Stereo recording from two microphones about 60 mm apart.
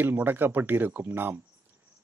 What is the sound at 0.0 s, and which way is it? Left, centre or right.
Speech, right.